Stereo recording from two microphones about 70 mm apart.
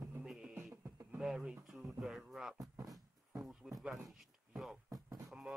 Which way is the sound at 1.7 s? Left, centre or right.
Centre.